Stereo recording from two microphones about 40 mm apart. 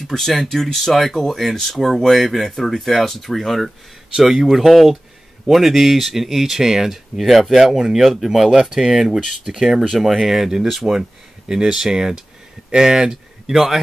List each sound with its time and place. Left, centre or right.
0.1 s speech: centre